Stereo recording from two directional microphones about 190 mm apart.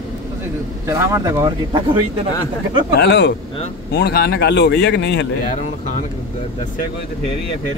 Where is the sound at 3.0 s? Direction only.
60° left (ahead or behind).